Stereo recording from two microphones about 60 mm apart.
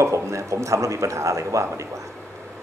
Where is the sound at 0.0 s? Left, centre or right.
Right.